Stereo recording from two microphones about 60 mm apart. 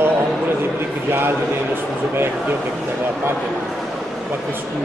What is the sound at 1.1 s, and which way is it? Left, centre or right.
Speech, right.